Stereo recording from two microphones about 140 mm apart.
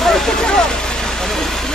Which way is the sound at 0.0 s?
Centre (ahead or behind).